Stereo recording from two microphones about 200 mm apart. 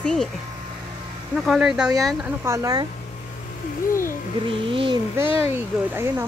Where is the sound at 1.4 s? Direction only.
Centre (ahead or behind).